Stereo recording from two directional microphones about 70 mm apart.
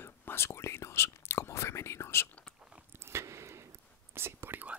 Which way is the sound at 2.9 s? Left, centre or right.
Right.